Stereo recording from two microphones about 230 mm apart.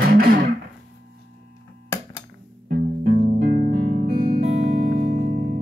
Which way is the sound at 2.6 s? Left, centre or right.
Right.